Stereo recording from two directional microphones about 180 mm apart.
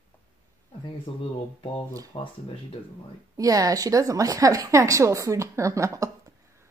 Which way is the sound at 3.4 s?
20° right (ahead or behind).